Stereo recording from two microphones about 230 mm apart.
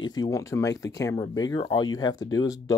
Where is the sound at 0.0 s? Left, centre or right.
Centre.